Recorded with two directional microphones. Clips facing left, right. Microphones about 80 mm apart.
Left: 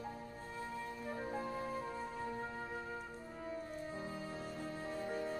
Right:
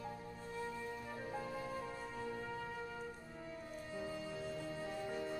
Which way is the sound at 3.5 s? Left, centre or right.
Left.